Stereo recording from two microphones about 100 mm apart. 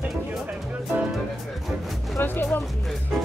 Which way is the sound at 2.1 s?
20° left (ahead or behind).